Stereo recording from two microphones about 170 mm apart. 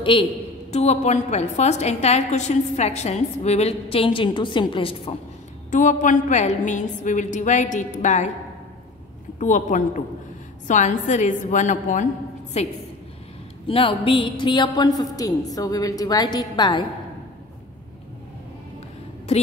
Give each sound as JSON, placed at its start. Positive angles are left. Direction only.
{"t": 0.0, "sound": "a woman's voice", "side_deg": 30}
{"t": 5.7, "sound": "a woman's voice", "side_deg": 45}
{"t": 9.4, "sound": "a woman's voice", "side_deg": 50}